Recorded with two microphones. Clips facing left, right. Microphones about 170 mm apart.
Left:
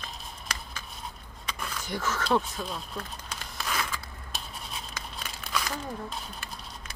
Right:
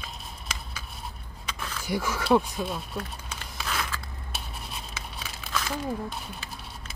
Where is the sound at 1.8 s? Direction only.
10° right (ahead or behind).